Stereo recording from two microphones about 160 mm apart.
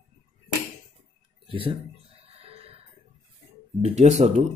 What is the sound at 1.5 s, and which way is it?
Speech, 35° right (ahead or behind).